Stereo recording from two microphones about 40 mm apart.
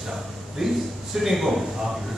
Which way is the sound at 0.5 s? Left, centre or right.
Centre.